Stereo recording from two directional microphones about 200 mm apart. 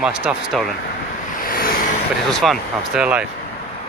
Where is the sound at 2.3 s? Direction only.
Centre (ahead or behind).